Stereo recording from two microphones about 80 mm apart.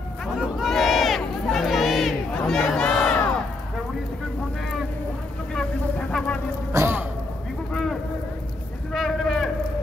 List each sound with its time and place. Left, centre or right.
0.4 s crowd: centre
5.5 s vehicle: centre
6.7 s sigh: right
8.9 s a sound: centre